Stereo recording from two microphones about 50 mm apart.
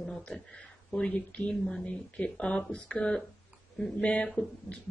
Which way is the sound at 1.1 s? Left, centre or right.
Left.